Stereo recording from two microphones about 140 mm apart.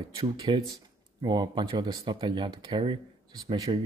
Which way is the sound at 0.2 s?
35° right (ahead or behind).